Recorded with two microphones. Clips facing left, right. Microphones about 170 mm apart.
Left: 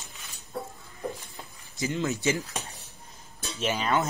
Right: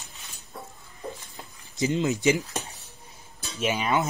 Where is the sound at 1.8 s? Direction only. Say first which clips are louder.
Right 4 dB; 20° right (ahead or behind).